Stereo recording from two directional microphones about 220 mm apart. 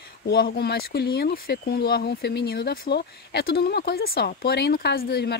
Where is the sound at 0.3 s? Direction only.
45° left (ahead or behind).